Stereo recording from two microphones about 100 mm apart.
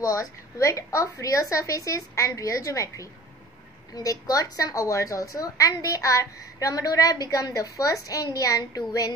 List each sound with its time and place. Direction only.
0.0 s a woman's voice: 35° left (ahead or behind)